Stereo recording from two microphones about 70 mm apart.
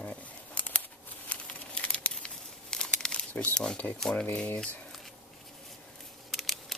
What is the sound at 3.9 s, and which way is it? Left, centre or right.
Speech, centre.